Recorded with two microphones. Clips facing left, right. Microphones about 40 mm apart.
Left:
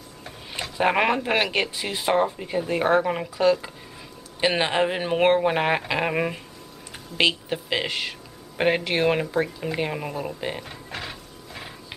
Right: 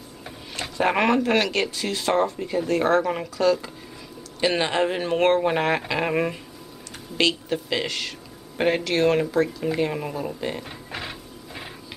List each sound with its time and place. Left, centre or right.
0.6 s speech: centre
10.9 s printer: centre